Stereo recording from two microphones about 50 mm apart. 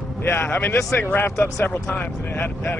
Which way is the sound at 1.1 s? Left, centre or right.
Left.